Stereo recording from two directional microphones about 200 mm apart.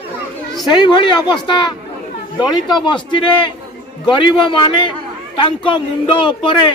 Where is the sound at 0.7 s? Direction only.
20° left (ahead or behind).